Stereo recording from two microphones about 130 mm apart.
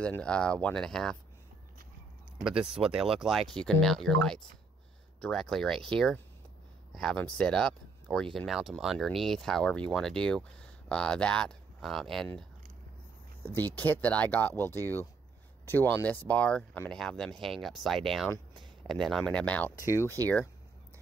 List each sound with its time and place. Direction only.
0.0 s speech: 10° left (ahead or behind)
2.4 s speech: 5° right (ahead or behind)
13.8 s speech: 15° left (ahead or behind)
19.9 s speech: 20° left (ahead or behind)